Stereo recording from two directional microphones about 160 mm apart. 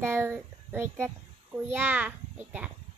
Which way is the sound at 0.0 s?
15° right (ahead or behind).